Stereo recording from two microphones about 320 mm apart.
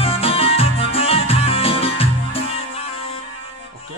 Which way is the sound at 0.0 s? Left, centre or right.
Centre.